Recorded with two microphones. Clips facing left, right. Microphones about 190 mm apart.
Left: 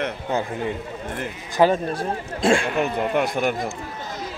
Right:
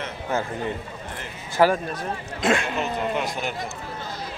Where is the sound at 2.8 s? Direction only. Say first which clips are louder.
Left 4 dB; 55° left (ahead or behind).